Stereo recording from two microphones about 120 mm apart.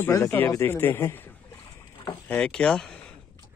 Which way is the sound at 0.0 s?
25° left (ahead or behind).